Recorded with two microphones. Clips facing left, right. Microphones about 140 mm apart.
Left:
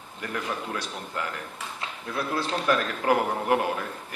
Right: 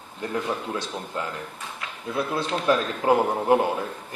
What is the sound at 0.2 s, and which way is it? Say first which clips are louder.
A man's voice: right 4 dB; 25° right (ahead or behind).